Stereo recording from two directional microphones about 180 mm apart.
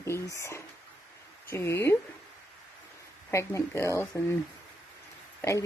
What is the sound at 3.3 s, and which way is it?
Speech, 15° left (ahead or behind).